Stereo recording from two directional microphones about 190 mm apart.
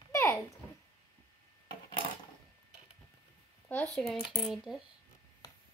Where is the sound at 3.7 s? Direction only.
5° left (ahead or behind).